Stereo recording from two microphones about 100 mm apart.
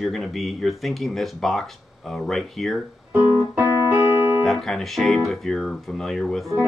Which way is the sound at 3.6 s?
40° left (ahead or behind).